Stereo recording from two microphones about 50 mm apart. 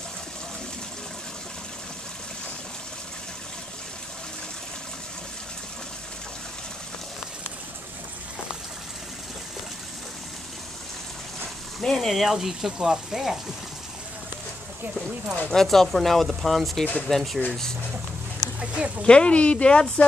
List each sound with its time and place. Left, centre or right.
11.8 s speech: centre
15.5 s speech: centre
18.6 s speech: right
19.0 s speech: left